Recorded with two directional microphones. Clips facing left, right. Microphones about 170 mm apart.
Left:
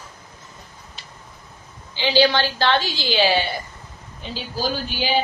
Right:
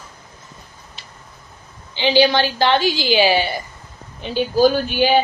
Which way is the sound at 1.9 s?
15° right (ahead or behind).